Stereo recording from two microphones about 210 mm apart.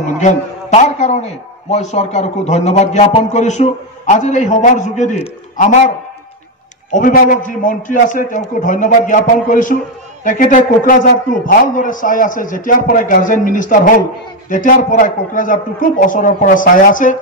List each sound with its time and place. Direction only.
0.0 s a man's voice: 35° left (ahead or behind)
6.9 s a man's voice: 40° left (ahead or behind)